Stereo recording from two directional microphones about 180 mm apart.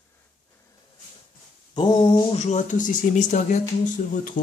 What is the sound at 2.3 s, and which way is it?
Speech, 40° left (ahead or behind).